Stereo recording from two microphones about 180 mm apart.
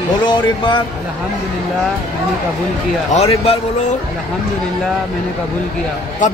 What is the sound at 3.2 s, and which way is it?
Speech, 35° left (ahead or behind).